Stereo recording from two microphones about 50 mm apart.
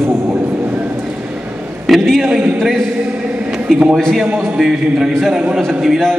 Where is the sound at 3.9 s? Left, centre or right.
Centre.